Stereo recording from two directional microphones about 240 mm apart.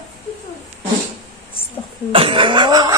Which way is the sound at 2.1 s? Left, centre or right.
Right.